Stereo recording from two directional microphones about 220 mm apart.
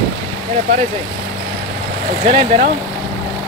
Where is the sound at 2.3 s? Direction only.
25° right (ahead or behind).